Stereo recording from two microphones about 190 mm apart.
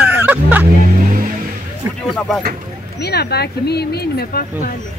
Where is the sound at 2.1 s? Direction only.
5° left (ahead or behind).